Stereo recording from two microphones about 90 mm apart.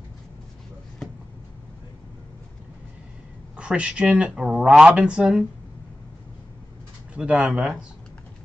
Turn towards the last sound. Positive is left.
turn(degrees=-5)  # may be behind; listen again after turning